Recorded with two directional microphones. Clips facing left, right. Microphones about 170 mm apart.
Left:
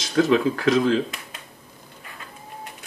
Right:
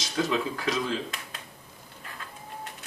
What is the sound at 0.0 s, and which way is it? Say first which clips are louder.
Speech: left 9 dB; 60° left (ahead or behind).